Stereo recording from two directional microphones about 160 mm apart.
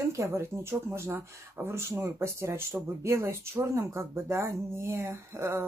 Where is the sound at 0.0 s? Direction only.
20° right (ahead or behind).